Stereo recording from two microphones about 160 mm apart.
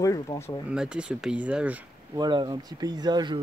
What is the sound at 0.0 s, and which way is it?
Speech, 20° left (ahead or behind).